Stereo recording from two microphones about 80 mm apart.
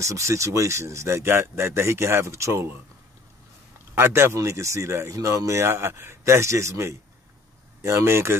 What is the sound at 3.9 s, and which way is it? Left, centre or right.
Speech, right.